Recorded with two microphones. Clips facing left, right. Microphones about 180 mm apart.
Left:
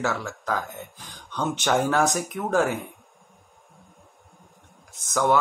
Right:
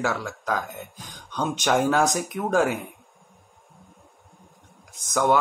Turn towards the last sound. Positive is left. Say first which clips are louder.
# right 1 dB
turn(degrees=-15)  # may be behind; listen again after turning